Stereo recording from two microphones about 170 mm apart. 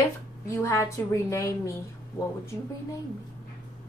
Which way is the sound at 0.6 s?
15° left (ahead or behind).